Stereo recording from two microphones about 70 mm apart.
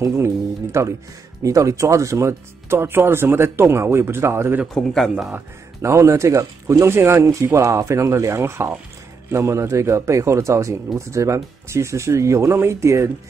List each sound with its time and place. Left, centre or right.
0.1 s speech: right
4.7 s a man's voice: centre
5.8 s speech: right